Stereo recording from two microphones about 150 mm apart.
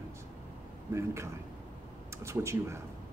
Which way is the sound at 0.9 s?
20° right (ahead or behind).